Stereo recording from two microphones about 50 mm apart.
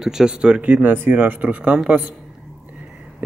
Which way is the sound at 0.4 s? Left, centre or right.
Right.